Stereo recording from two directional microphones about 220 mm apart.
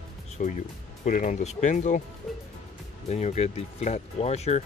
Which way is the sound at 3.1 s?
30° left (ahead or behind).